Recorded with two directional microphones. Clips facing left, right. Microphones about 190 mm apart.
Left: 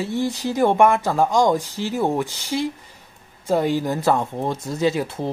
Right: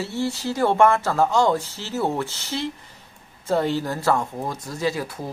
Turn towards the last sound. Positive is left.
turn(degrees=25)  # may be behind; listen again after turning